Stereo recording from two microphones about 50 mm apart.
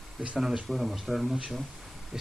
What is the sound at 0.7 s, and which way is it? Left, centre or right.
Speech, centre.